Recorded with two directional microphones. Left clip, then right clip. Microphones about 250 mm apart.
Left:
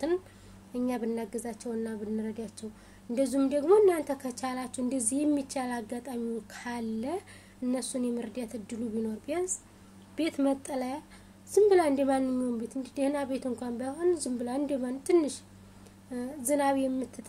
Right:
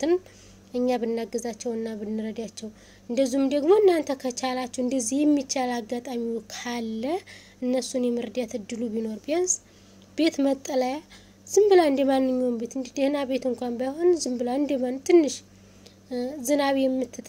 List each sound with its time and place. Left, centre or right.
0.7 s speech: right